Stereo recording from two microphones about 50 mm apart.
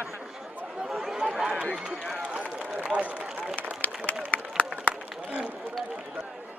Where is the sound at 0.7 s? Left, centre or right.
Centre.